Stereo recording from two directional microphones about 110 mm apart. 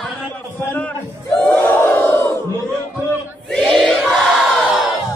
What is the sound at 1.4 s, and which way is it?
Battle cry, 20° left (ahead or behind).